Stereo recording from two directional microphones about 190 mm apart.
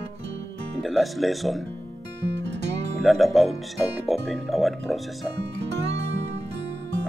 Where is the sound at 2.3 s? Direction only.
65° right (ahead or behind).